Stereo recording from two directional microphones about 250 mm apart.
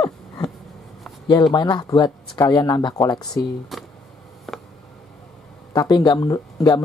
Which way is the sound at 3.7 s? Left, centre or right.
Centre.